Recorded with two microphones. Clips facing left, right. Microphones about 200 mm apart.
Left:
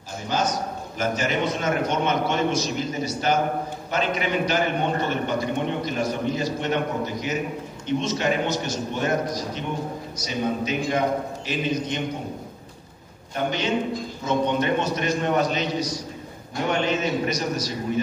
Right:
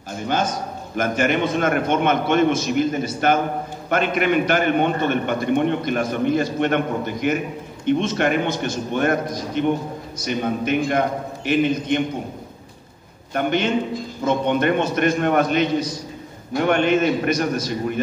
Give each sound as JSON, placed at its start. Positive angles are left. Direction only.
{"t": 0.3, "sound": "a man's voice", "side_deg": -55}
{"t": 13.3, "sound": "a man's voice", "side_deg": -55}